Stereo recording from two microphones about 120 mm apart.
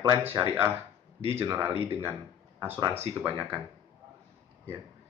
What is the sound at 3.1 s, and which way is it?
Speech, 50° right (ahead or behind).